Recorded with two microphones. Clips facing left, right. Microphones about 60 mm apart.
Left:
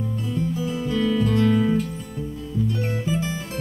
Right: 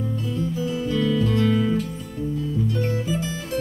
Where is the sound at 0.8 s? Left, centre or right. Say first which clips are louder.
Left 1 dB; left.